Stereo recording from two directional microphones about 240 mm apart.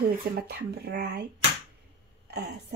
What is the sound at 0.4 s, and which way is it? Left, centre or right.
Speech, right.